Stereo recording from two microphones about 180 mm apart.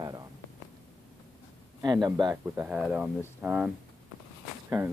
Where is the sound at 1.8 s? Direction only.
20° right (ahead or behind); by 3.7 s 5° right (ahead or behind).